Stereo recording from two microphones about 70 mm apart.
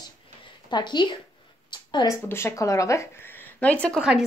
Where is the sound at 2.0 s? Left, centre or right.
Left.